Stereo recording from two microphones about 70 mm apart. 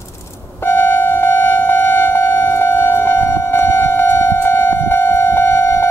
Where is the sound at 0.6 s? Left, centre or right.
Left.